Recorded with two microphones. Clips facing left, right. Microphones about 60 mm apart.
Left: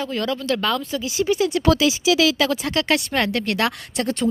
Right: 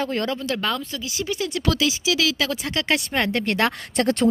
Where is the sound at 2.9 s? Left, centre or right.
Right.